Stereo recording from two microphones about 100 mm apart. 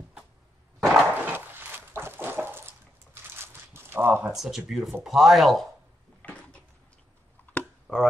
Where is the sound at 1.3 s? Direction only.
20° right (ahead or behind).